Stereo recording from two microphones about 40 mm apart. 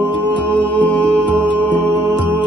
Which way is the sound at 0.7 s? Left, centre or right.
Left.